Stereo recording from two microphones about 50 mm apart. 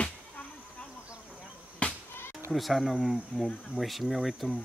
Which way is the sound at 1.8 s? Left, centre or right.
Left.